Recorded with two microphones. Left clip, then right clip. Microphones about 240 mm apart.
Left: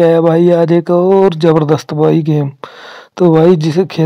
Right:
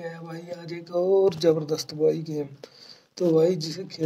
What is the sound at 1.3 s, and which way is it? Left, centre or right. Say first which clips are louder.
Speech: left 12 dB; left.